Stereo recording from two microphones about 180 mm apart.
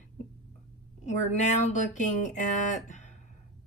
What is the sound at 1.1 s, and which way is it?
Speech, 40° left (ahead or behind).